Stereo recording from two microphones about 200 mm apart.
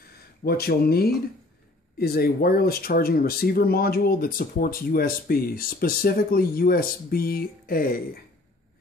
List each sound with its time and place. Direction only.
0.4 s speech: 50° left (ahead or behind)